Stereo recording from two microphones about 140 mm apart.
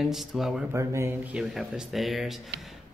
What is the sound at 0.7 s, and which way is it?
Speech, 20° right (ahead or behind).